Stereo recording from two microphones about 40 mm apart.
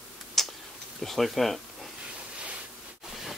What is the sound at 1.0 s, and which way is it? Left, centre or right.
Speech, centre.